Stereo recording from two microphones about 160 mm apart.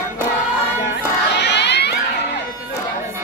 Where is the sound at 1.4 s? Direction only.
90° left.